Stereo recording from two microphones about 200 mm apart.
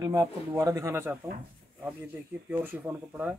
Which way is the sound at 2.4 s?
10° right (ahead or behind).